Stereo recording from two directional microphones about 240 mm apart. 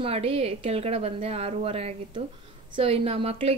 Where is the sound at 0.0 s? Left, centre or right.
Right.